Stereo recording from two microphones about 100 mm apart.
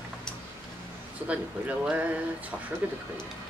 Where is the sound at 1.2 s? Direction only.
15° right (ahead or behind).